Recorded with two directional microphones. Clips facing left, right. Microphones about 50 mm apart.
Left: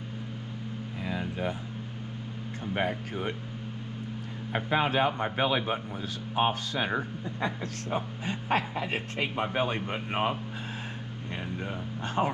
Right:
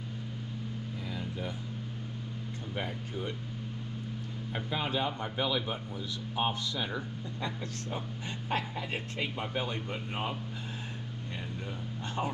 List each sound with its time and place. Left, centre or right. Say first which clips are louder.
1.0 s a sound: left 7 dB; left
2.7 s speech: left 7 dB; left
4.5 s speech: left 7 dB; left
12.2 s speech: left 6 dB; left